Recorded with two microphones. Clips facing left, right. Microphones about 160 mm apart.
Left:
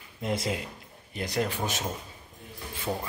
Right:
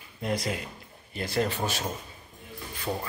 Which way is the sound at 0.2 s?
20° left (ahead or behind).